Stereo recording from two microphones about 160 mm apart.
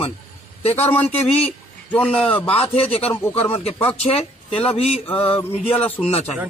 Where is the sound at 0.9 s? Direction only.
10° left (ahead or behind).